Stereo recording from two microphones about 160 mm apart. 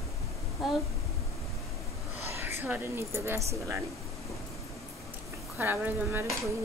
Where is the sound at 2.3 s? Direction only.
15° right (ahead or behind).